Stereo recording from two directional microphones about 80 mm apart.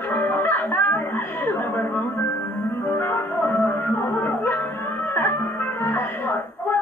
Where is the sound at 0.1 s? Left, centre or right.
Left.